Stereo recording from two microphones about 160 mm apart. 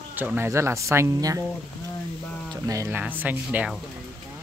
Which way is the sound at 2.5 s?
20° right (ahead or behind).